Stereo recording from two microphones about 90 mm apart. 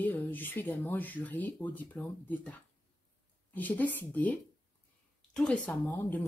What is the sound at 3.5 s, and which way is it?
Speech, 20° left (ahead or behind).